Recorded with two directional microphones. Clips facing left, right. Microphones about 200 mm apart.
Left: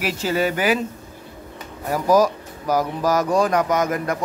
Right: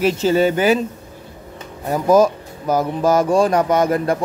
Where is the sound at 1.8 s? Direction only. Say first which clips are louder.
Right 3 dB; 25° right (ahead or behind).